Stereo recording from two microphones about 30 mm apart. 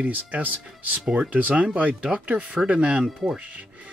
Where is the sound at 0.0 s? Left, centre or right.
Right.